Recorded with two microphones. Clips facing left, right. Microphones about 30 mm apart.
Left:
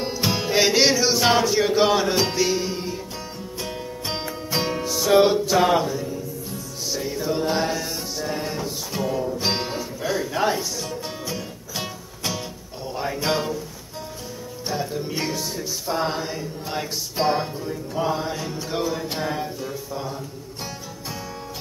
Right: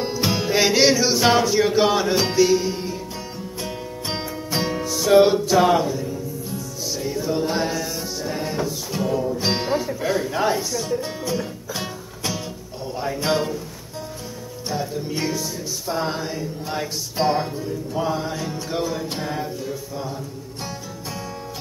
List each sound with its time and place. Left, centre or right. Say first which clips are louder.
0.0 s music: right 2 dB; centre
9.8 s music: right 3 dB; right
10.3 s music: right 1 dB; centre
14.7 s music: right 1 dB; centre